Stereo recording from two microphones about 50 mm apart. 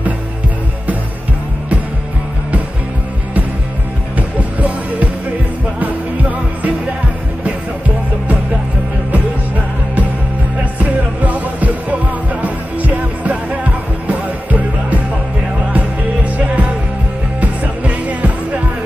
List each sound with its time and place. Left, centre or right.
4.4 s music: right
10.6 s music: right
17.4 s music: right